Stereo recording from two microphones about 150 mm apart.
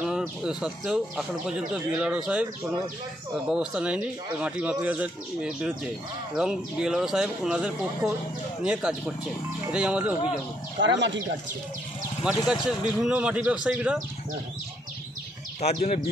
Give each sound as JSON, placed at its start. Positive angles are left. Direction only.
{"t": 0.0, "sound": "speech", "side_deg": -5}
{"t": 10.8, "sound": "speech", "side_deg": -65}
{"t": 12.3, "sound": "speech", "side_deg": -5}
{"t": 15.6, "sound": "speech", "side_deg": 45}